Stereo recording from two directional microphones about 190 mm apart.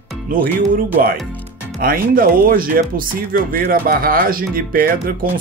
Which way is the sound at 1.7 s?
50° right (ahead or behind).